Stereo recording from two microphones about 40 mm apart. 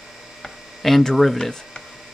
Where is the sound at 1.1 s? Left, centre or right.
Centre.